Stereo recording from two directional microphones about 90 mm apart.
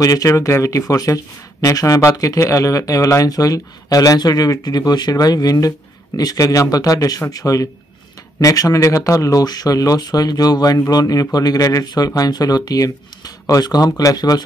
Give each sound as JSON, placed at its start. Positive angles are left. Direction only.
{"t": 0.0, "sound": "speech", "side_deg": 40}